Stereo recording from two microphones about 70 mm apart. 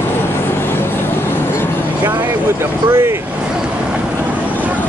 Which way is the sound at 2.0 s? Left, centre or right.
Right.